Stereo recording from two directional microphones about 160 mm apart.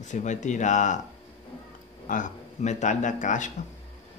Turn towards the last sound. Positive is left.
turn(degrees=50)  # may be behind; listen again after turning